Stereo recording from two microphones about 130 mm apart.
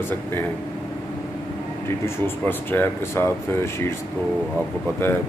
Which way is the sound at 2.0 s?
15° left (ahead or behind).